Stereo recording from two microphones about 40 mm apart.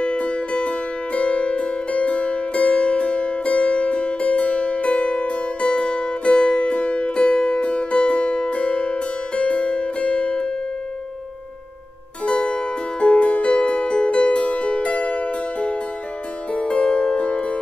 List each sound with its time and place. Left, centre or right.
0.0 s music: left
12.3 s music: left